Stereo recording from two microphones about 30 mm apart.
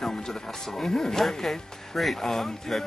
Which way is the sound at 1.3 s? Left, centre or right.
Centre.